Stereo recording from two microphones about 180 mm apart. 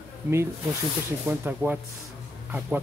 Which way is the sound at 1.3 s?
10° right (ahead or behind).